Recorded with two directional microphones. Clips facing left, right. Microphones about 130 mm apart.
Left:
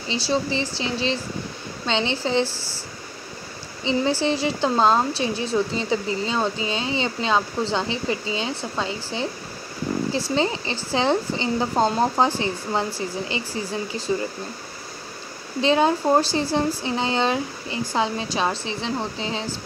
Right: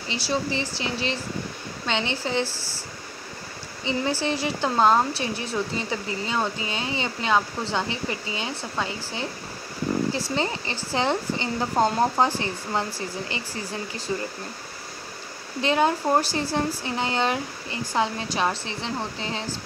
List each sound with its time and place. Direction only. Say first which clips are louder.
0.1 s a woman's voice: left 3 dB; 25° left (ahead or behind)
3.8 s a woman's voice: left 4 dB; 25° left (ahead or behind)
10.3 s a woman's voice: left 4 dB; 20° left (ahead or behind)
14.1 s speech: left 4 dB; 15° left (ahead or behind)
15.6 s a woman's voice: left 3 dB; 25° left (ahead or behind)